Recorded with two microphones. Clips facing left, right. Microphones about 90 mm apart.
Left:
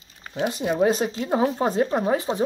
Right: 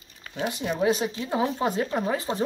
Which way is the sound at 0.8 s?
40° left (ahead or behind).